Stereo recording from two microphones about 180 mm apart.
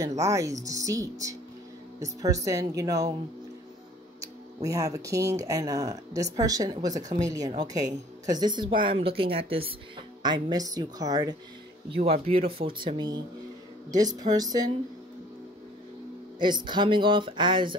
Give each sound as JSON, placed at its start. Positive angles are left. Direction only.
{"t": 0.0, "sound": "speech", "side_deg": -15}
{"t": 4.2, "sound": "speech", "side_deg": -20}
{"t": 7.0, "sound": "speech", "side_deg": -40}
{"t": 7.2, "sound": "speech", "side_deg": -20}
{"t": 11.9, "sound": "speech", "side_deg": -35}
{"t": 16.3, "sound": "speech", "side_deg": -25}